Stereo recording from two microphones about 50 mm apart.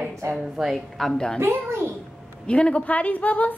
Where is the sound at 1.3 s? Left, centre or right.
Right.